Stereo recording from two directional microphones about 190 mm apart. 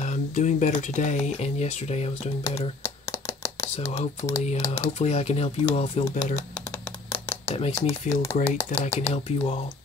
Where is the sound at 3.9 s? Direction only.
35° left (ahead or behind).